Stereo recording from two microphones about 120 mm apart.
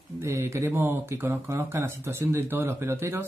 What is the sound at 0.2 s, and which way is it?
Speech, 20° right (ahead or behind).